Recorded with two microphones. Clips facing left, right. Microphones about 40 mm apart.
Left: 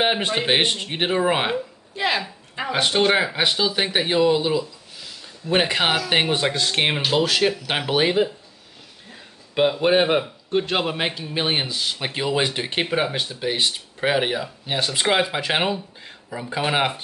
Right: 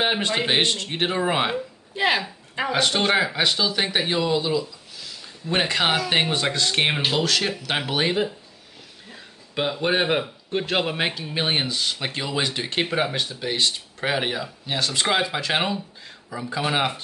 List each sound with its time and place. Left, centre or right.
0.0 s speech: centre
2.0 s a woman's voice: centre
2.7 s a man's voice: centre
12.8 s speech: centre